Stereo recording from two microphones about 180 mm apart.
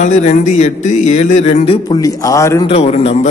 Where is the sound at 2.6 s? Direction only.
35° left (ahead or behind).